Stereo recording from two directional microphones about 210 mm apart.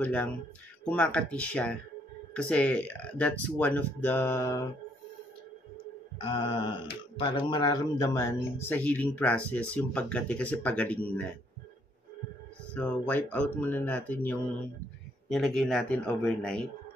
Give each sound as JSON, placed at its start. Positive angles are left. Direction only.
{"t": 0.0, "sound": "a man's voice", "side_deg": 5}
{"t": 6.2, "sound": "a sound", "side_deg": 25}
{"t": 7.2, "sound": "a man's voice", "side_deg": 20}
{"t": 12.7, "sound": "a man's voice", "side_deg": 5}